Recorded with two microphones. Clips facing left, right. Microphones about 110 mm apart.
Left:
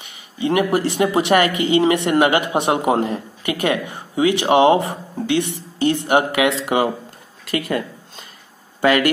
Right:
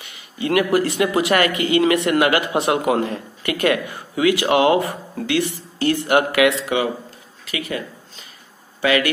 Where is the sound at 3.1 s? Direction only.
20° left (ahead or behind).